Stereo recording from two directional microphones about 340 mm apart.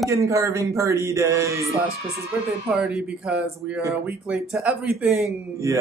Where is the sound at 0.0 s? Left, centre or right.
Centre.